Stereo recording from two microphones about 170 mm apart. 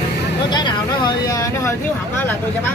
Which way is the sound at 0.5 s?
25° left (ahead or behind).